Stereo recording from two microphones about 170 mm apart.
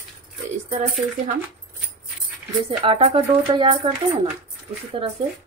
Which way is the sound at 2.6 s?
35° right (ahead or behind).